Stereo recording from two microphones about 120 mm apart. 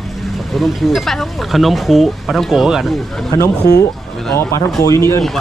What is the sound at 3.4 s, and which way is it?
Speech, 25° left (ahead or behind).